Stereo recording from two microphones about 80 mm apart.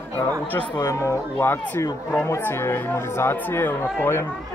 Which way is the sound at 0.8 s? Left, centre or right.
Left.